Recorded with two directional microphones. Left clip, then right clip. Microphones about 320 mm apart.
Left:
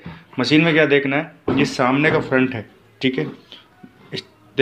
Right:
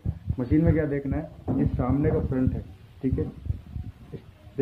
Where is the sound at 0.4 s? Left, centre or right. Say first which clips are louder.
Left 10 dB; left.